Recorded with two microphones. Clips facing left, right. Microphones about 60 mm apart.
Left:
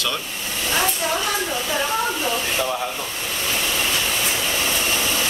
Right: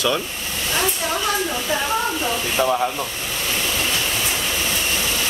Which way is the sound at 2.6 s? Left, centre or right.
Right.